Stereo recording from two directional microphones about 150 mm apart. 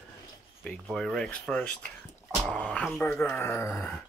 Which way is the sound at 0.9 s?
5° left (ahead or behind).